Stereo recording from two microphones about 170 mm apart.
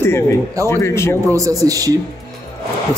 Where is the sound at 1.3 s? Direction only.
20° right (ahead or behind).